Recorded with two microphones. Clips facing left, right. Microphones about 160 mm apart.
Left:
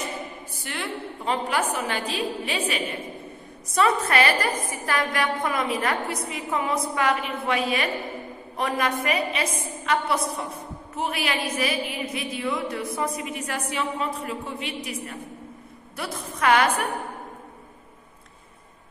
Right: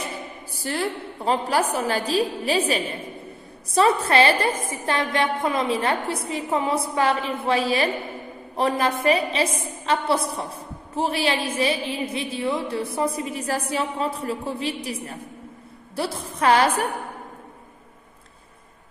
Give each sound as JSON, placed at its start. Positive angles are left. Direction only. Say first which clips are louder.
{"t": 0.6, "sound": "a woman's voice", "louder": "right 6 dB", "side_deg": -35}